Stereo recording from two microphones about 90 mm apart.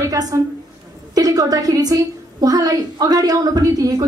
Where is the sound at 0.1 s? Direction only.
40° right (ahead or behind).